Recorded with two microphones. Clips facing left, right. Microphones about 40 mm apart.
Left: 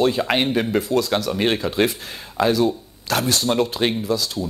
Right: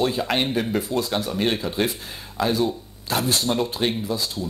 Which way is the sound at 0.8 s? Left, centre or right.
Left.